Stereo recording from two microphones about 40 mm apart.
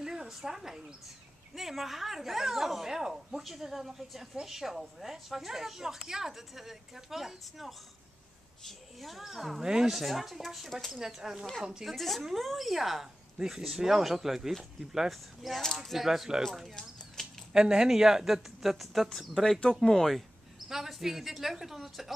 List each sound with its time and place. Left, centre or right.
0.0 s a sound: centre
0.3 s a woman's voice: centre
9.6 s a woman's voice: centre
9.9 s a woman's voice: centre
11.8 s speech: centre
12.2 s a woman's voice: centre
15.9 s a woman's voice: centre
17.5 s a woman's voice: centre